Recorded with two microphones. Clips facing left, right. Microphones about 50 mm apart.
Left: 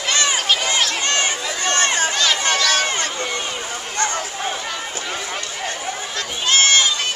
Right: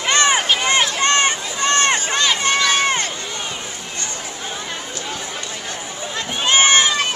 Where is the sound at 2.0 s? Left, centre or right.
Right.